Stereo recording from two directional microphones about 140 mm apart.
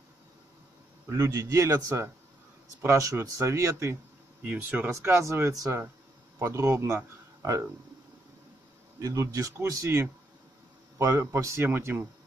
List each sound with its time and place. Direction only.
1.0 s speech: 20° right (ahead or behind)
9.0 s speech: 20° right (ahead or behind)